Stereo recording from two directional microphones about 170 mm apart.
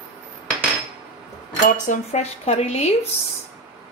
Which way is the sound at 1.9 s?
40° left (ahead or behind).